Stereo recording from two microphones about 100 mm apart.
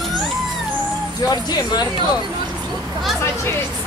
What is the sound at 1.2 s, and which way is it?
Speech, 40° left (ahead or behind).